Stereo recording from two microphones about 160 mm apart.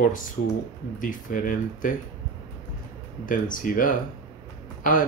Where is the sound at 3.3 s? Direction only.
60° left (ahead or behind).